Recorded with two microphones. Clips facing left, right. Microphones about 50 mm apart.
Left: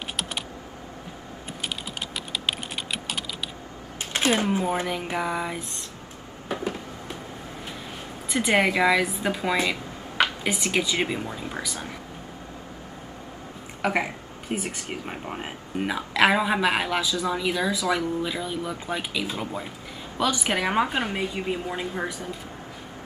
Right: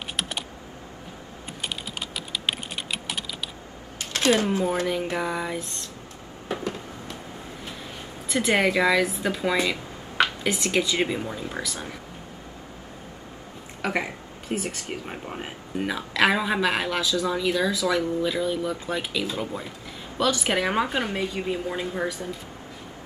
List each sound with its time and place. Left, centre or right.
2.1 s typing: centre
4.0 s speech: left
5.1 s speech: centre
6.6 s a sound: centre
8.5 s speech: centre
13.8 s speech: centre
14.5 s speech: left
15.0 s speech: centre